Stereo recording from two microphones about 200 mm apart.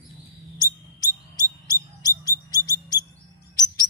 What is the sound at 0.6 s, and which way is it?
Mouse, 20° left (ahead or behind).